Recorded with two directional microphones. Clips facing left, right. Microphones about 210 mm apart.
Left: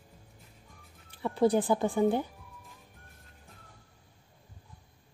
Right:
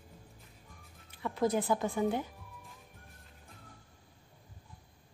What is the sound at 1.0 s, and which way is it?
A woman's voice, 30° left (ahead or behind).